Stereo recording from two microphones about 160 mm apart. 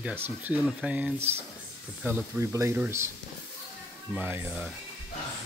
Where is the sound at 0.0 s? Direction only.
10° right (ahead or behind).